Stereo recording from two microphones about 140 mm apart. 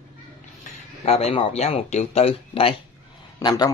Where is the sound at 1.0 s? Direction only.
50° left (ahead or behind).